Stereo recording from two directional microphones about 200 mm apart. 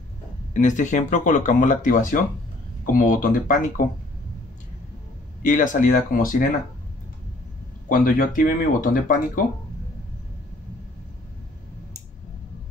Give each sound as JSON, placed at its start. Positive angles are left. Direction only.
{"t": 0.6, "sound": "speech", "side_deg": 40}
{"t": 5.4, "sound": "speech", "side_deg": 40}
{"t": 7.9, "sound": "speech", "side_deg": 45}